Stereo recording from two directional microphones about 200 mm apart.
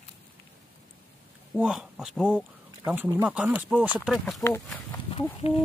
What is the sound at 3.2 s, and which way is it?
Speech, 5° right (ahead or behind).